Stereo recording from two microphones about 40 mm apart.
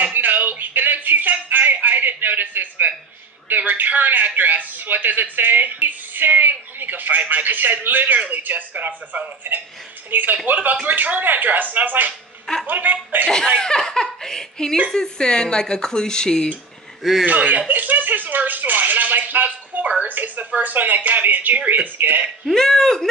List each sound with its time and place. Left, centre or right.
0.0 s a sound: right
3.4 s a man's voice: right
13.6 s giggle: centre
15.0 s speech: left
17.0 s speech: centre
17.3 s a sound: right
20.0 s a man's voice: right
22.5 s speech: centre